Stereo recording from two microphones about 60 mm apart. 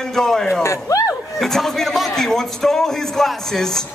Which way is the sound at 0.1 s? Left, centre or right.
Centre.